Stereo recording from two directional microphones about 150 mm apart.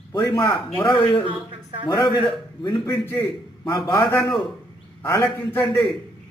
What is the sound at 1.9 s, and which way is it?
A man's voice, 30° left (ahead or behind).